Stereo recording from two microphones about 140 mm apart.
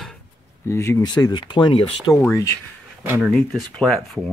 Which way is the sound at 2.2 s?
20° left (ahead or behind).